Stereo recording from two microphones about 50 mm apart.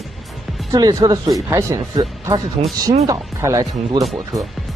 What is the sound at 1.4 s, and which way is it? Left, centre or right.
Speech, right.